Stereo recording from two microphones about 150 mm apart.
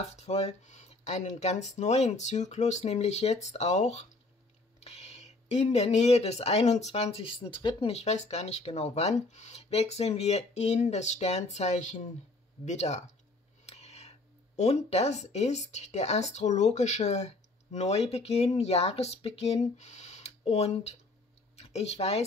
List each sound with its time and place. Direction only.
0.0 s speech: 45° left (ahead or behind)